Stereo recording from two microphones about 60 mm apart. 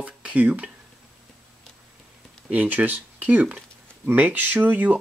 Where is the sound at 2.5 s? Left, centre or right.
Right.